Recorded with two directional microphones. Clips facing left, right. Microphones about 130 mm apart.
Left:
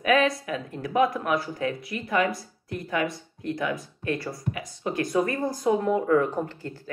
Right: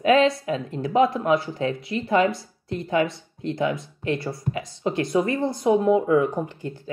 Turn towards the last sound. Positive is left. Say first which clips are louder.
# right 2 dB
turn(degrees=-20)  # may be behind; listen again after turning